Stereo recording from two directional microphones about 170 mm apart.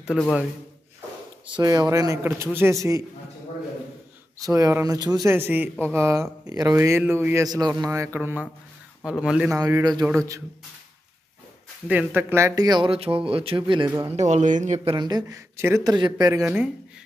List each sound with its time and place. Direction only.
0.0 s speech: centre (ahead or behind)
1.6 s speech: 20° right (ahead or behind)
4.4 s a man's voice: 20° right (ahead or behind)
9.5 s a man's voice: 15° right (ahead or behind)
11.9 s speech: 10° right (ahead or behind); by 13.9 s 30° right (ahead or behind)
14.1 s speech: 45° right (ahead or behind)
14.9 s speech: 25° right (ahead or behind)